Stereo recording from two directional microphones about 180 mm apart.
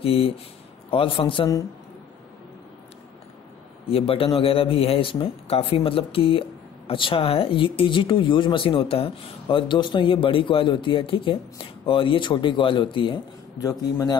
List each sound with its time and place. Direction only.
0.0 s a man's voice: 30° left (ahead or behind)
3.9 s a man's voice: 30° left (ahead or behind)